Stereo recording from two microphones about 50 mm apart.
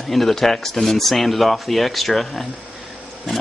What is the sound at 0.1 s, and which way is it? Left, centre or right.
Speech, centre.